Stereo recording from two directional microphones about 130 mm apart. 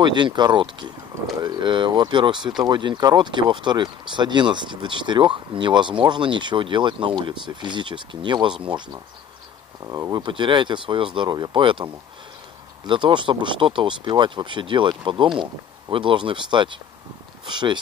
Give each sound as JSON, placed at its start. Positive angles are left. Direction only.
{"t": 0.0, "sound": "speech", "side_deg": -35}
{"t": 9.8, "sound": "speech", "side_deg": -30}